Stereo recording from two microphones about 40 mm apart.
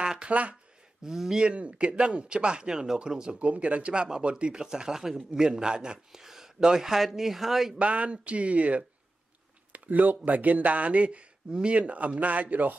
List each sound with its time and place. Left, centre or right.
0.2 s speech: right
1.0 s a man's voice: centre
1.4 s speech: right
3.3 s a man's voice: right; by 7.7 s centre
7.8 s speech: right